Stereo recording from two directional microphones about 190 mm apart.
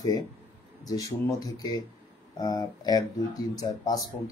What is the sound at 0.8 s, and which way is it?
Speech, 20° left (ahead or behind).